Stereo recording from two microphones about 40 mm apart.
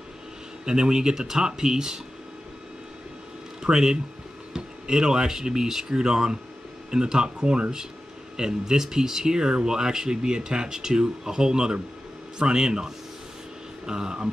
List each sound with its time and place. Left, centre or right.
0.7 s speech: right
3.6 s speech: centre